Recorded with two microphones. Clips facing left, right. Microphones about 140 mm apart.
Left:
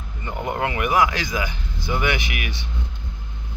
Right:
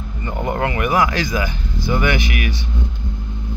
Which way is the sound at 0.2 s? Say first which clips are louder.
Right 3 dB; 10° left (ahead or behind).